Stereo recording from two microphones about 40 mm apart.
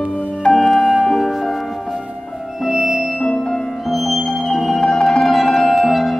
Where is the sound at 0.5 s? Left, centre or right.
Centre.